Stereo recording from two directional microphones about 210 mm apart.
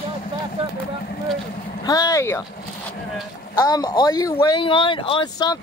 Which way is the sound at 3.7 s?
20° left (ahead or behind).